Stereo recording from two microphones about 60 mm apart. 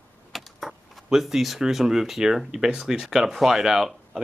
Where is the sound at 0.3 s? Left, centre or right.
Centre.